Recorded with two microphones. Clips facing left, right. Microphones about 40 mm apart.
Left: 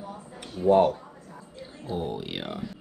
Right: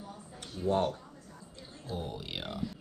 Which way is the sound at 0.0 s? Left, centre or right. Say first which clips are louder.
Left 6 dB; left.